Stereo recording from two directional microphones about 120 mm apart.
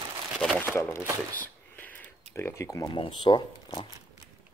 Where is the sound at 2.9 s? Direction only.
40° left (ahead or behind).